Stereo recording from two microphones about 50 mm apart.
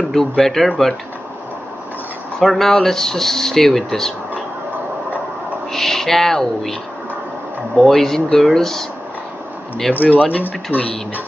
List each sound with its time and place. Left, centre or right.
0.0 s speech: centre
2.4 s speech: centre
5.7 s speech: centre
9.9 s speech: left